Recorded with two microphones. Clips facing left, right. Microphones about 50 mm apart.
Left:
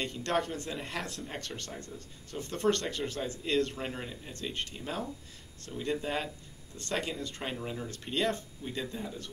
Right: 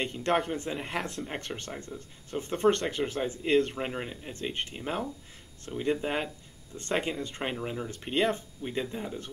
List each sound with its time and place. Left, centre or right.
0.0 s speech: right